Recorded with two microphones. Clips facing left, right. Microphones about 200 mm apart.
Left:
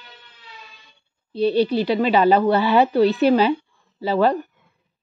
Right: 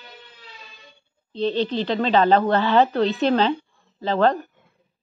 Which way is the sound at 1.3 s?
10° left (ahead or behind).